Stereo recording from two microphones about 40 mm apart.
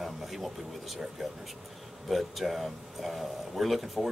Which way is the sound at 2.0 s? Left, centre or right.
Centre.